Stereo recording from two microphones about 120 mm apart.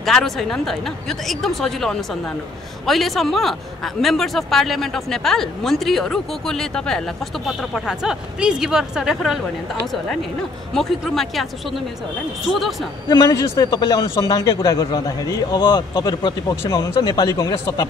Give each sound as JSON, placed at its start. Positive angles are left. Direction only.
{"t": 0.0, "sound": "a man's voice", "side_deg": 5}
{"t": 10.7, "sound": "a man's voice", "side_deg": 5}
{"t": 13.3, "sound": "a man's voice", "side_deg": 30}